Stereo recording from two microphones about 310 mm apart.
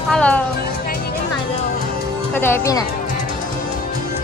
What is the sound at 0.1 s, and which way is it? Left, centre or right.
Speech, centre.